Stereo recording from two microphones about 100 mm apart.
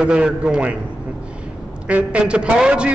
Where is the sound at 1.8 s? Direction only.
10° right (ahead or behind).